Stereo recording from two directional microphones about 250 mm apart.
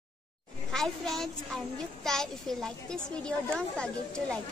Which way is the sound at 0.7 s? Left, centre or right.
Centre.